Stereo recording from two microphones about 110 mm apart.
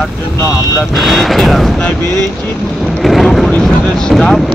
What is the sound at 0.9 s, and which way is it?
Speech, centre (ahead or behind).